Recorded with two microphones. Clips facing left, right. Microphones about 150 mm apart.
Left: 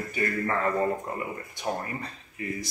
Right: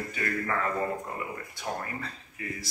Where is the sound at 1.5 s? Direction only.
20° left (ahead or behind).